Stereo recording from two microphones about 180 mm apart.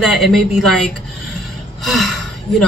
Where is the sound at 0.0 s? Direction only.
Centre (ahead or behind).